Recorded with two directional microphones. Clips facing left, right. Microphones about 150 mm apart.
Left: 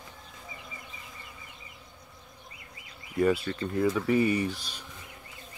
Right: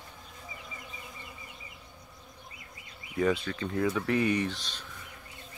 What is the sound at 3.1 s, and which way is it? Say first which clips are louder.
Speech: left 3 dB; 5° left (ahead or behind).